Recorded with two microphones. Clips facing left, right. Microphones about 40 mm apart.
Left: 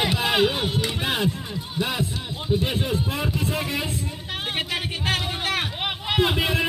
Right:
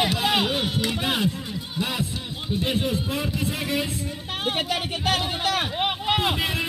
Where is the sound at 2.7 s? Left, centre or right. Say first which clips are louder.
Right 1 dB; left.